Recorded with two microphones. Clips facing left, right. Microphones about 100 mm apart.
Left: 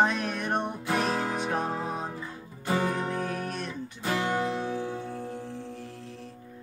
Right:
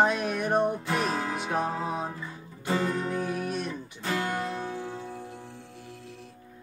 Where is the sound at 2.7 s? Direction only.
15° left (ahead or behind).